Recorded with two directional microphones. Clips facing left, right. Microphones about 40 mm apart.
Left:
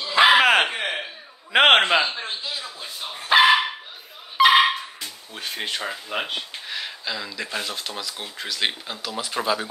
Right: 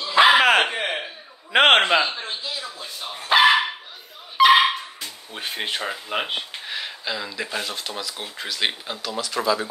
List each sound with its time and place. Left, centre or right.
0.0 s dog: centre
0.9 s a sound: centre
4.4 s dog: centre
5.3 s speech: centre
9.2 s speech: left